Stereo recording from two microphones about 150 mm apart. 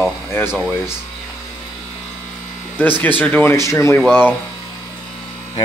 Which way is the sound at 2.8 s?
15° left (ahead or behind).